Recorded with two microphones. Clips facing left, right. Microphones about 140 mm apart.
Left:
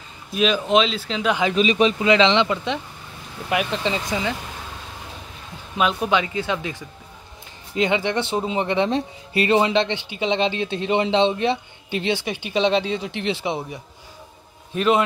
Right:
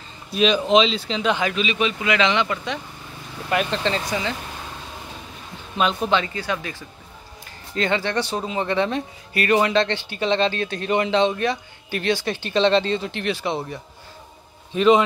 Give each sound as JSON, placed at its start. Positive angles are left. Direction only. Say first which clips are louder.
{"t": 0.3, "sound": "speech", "louder": "right 1 dB", "side_deg": 5}
{"t": 1.5, "sound": "speech", "louder": "left 5 dB", "side_deg": 40}
{"t": 3.4, "sound": "speech", "louder": "even", "side_deg": 10}
{"t": 5.8, "sound": "speech", "louder": "even", "side_deg": 5}
{"t": 14.7, "sound": "speech", "louder": "right 3 dB", "side_deg": 5}